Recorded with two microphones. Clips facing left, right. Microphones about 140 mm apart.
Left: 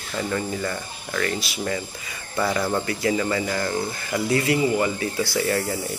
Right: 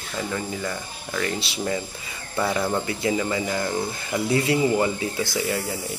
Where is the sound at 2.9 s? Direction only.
20° right (ahead or behind).